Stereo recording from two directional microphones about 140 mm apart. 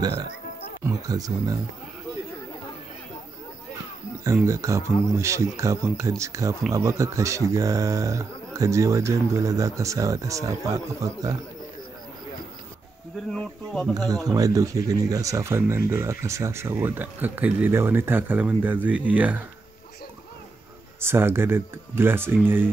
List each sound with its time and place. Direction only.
0.8 s speech: 25° right (ahead or behind)
4.5 s speech: 20° right (ahead or behind)
13.3 s speech: 5° left (ahead or behind)
13.9 s speech: 25° right (ahead or behind); by 19.4 s 10° right (ahead or behind)
21.0 s speech: 15° right (ahead or behind)